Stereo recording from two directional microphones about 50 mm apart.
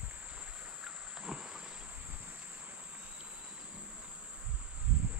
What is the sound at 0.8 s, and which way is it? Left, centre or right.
Frog, centre.